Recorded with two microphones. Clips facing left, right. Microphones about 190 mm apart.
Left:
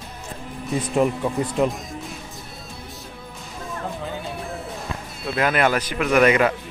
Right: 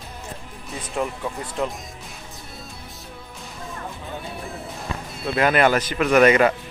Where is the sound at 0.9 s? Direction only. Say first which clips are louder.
Left 6 dB; 20° left (ahead or behind).